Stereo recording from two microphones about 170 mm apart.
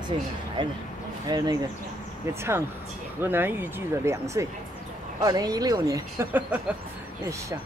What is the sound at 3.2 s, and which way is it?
Speech, 10° right (ahead or behind).